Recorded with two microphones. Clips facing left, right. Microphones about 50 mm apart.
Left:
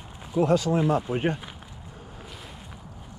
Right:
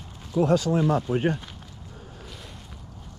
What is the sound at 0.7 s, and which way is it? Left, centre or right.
Speech, left.